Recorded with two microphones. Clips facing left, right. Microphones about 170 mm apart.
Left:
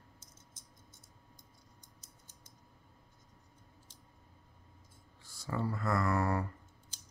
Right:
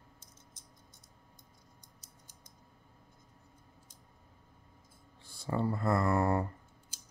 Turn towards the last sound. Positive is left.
turn(degrees=-25)  # may be behind; listen again after turning